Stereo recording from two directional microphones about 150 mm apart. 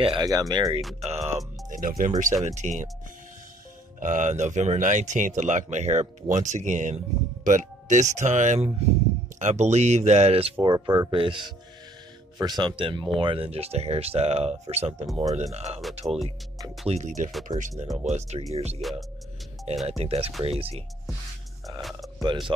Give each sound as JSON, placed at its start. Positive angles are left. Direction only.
{"t": 0.0, "sound": "speech", "side_deg": -30}
{"t": 1.0, "sound": "music", "side_deg": -45}
{"t": 1.8, "sound": "speech", "side_deg": -70}
{"t": 4.0, "sound": "speech", "side_deg": -55}
{"t": 10.6, "sound": "speech", "side_deg": -30}
{"t": 18.8, "sound": "speech", "side_deg": 0}
{"t": 20.0, "sound": "speech", "side_deg": -40}
{"t": 22.2, "sound": "speech", "side_deg": -30}